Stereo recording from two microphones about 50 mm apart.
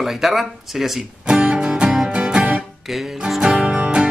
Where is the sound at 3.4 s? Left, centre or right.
Centre.